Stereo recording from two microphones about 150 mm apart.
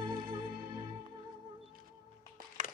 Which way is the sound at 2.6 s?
55° right (ahead or behind).